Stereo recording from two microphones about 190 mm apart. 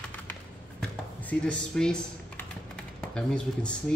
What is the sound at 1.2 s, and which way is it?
Speech, 5° left (ahead or behind).